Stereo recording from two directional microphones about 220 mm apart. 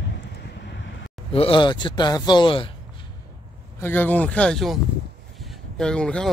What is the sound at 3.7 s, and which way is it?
Speech, 10° left (ahead or behind).